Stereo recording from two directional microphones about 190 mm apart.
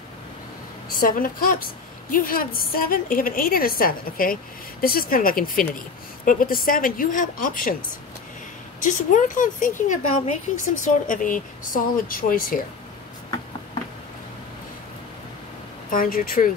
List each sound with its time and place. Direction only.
0.9 s a woman's voice: 50° left (ahead or behind)
8.8 s a woman's voice: 45° left (ahead or behind)
15.9 s a woman's voice: 45° left (ahead or behind)